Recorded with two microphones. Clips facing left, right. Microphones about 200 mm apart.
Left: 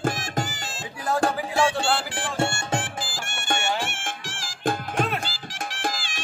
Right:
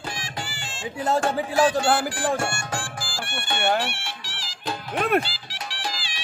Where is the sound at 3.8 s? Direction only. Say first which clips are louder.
Right 2 dB; 45° left (ahead or behind).